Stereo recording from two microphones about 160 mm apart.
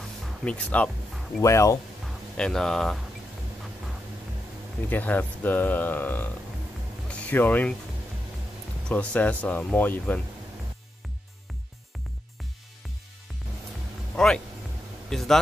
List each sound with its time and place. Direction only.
0.5 s speech: 10° left (ahead or behind)
1.4 s speech: 20° left (ahead or behind)
2.3 s speech: 5° left (ahead or behind)
4.8 s speech: 10° left (ahead or behind)
8.8 s speech: 10° left (ahead or behind)
14.1 s a man's voice: 5° left (ahead or behind)